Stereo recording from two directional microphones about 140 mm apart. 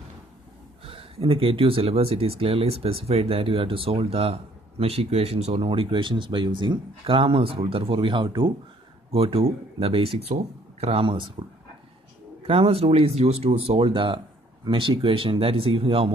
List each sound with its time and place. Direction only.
0.8 s speech: 40° right (ahead or behind)
12.4 s speech: 45° right (ahead or behind)